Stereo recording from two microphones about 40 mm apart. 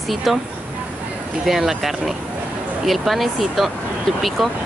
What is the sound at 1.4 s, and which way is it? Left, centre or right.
Speech, centre.